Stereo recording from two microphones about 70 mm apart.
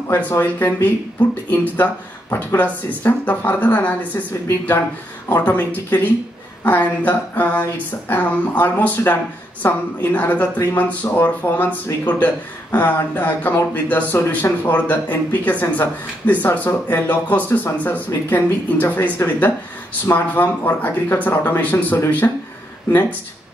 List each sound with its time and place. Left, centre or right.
0.3 s speech: left